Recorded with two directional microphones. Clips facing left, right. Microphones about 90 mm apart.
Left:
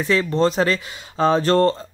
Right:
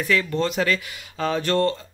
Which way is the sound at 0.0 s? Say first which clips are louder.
Left 4 dB; 30° left (ahead or behind).